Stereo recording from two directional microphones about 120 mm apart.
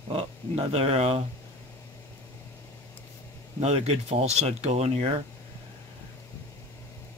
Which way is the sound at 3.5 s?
60° right (ahead or behind).